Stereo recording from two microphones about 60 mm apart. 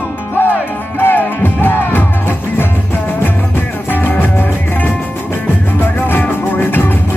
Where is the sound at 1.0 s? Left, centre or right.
Left.